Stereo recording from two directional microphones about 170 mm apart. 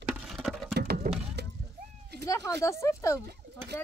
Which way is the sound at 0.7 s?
75° right (ahead or behind).